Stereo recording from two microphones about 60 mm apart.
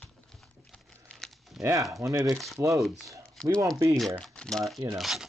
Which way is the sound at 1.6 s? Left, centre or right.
Right.